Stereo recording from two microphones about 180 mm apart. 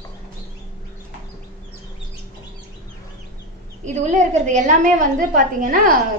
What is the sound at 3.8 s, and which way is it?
A woman's voice, 40° right (ahead or behind).